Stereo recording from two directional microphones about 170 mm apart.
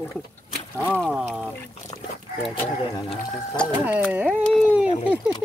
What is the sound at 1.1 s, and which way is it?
Speech, 5° right (ahead or behind).